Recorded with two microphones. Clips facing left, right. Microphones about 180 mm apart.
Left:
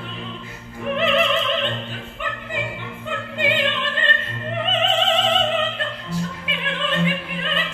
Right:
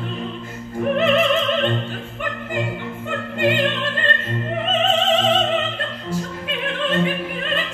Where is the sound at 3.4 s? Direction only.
45° right (ahead or behind).